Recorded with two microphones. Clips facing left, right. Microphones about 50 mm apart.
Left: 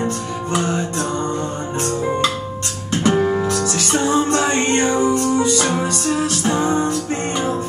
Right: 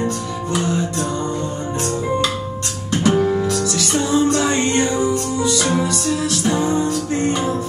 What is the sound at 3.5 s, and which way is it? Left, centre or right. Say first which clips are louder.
Music: even; left.